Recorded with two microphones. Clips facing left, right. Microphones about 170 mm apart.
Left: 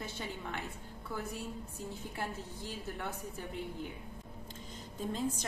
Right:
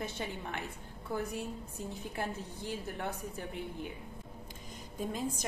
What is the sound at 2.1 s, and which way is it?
A woman's voice, 20° right (ahead or behind).